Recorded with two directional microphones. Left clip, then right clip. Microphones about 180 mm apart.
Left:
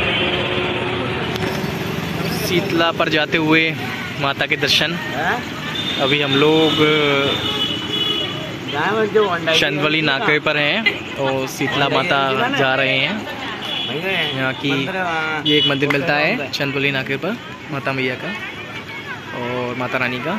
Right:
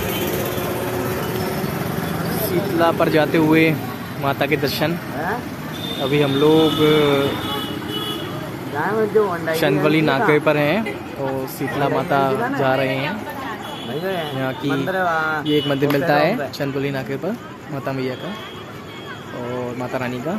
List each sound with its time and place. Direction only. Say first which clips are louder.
2.8 s speech: right 3 dB; 5° right (ahead or behind)
6.0 s speech: left 1 dB; centre (ahead or behind)
8.7 s speech: left 1 dB; 15° left (ahead or behind)
9.6 s speech: even; 10° right (ahead or behind)
11.9 s speech: left 1 dB; 15° left (ahead or behind)
12.6 s speech: left 1 dB; 5° right (ahead or behind)
14.4 s speech: left 3 dB; 15° right (ahead or behind)
15.0 s speech: right 1 dB; 35° right (ahead or behind)
15.4 s speech: left 3 dB; 15° right (ahead or behind)